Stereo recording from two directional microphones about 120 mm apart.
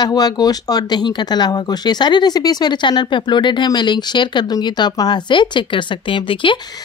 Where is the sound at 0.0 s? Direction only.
35° left (ahead or behind).